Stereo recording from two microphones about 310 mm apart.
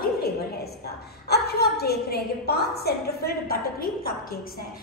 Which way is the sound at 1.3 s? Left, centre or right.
Left.